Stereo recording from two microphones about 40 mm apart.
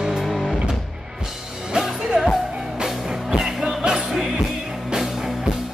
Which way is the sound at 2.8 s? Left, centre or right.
Centre.